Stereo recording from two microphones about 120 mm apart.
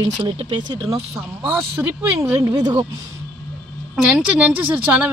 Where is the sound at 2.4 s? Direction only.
30° right (ahead or behind).